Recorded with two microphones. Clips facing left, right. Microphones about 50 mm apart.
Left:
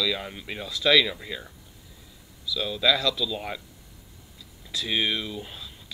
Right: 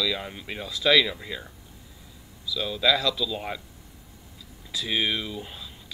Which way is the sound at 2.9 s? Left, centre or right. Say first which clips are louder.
Even; right.